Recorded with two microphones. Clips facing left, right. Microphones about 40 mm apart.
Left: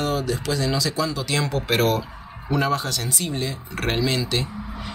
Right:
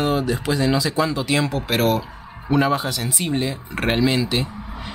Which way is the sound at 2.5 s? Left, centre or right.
Centre.